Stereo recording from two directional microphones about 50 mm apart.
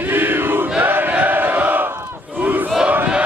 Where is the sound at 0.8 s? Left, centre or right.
Right.